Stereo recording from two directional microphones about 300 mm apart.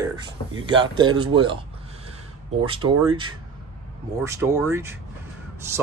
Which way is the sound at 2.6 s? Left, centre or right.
Centre.